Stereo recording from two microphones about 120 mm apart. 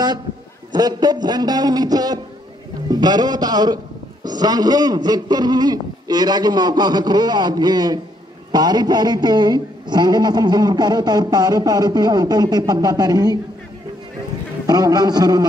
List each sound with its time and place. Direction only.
0.7 s a man's voice: 35° right (ahead or behind)
14.7 s a man's voice: 35° right (ahead or behind)